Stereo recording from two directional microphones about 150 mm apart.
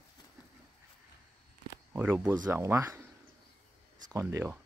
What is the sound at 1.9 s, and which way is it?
Speech, 15° right (ahead or behind).